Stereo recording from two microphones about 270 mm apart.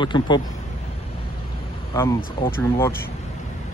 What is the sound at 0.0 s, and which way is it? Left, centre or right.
Speech, centre.